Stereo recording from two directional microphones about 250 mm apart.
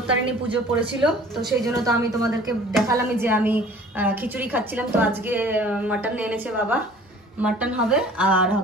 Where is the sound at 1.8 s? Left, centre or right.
Centre.